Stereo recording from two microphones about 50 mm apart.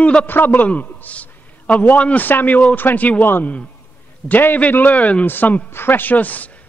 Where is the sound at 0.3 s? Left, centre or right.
Left.